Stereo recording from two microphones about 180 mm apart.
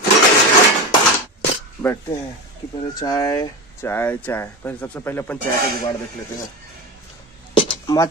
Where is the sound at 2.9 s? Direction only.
20° left (ahead or behind).